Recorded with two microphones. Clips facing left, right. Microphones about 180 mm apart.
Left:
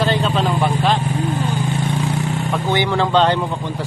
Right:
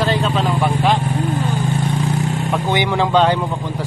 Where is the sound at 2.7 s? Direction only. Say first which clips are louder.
Even; 15° right (ahead or behind).